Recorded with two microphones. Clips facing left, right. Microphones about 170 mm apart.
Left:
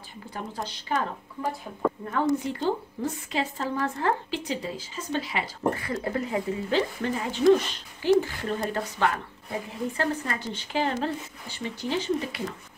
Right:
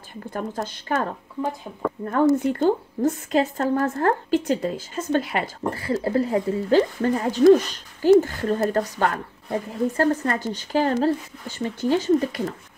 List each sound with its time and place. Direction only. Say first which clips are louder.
0.3 s a woman's voice: right 6 dB; 50° right (ahead or behind)
2.3 s a woman's voice: right 7 dB; 50° right (ahead or behind)
5.7 s a woman's voice: right 4 dB; 30° right (ahead or behind)